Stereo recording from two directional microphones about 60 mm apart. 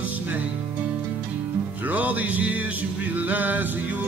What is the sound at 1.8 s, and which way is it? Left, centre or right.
Music, right.